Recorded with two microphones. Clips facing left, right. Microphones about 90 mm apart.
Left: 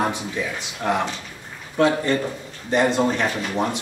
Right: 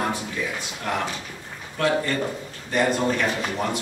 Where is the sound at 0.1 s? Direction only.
20° left (ahead or behind).